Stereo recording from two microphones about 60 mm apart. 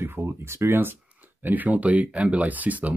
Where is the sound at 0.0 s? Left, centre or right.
Right.